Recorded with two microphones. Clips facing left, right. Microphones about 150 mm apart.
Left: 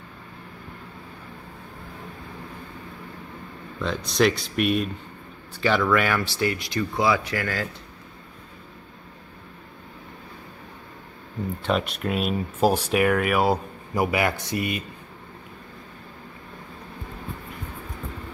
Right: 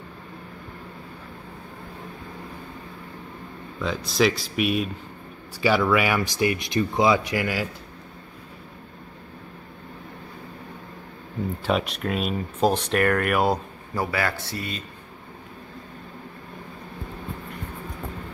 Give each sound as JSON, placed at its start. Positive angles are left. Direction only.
{"t": 3.8, "sound": "speech", "side_deg": 0}
{"t": 11.6, "sound": "speech", "side_deg": 0}
{"t": 13.9, "sound": "speech", "side_deg": 15}